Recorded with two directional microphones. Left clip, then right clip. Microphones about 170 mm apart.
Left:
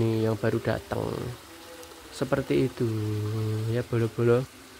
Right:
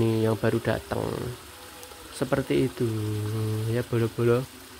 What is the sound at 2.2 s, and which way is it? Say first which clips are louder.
Speech: right 1 dB; centre (ahead or behind).